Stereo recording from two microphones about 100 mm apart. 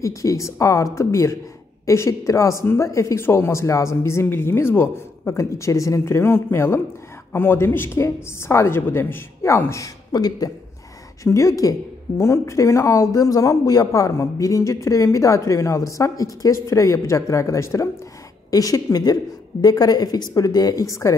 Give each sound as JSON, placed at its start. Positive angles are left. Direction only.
{"t": 0.0, "sound": "a woman's voice", "side_deg": 30}
{"t": 10.1, "sound": "speech", "side_deg": 40}